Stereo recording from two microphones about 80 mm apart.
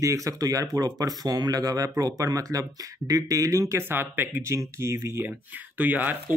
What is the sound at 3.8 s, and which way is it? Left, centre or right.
Speech, right.